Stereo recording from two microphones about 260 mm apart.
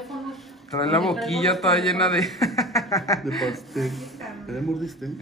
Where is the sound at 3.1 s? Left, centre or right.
Centre.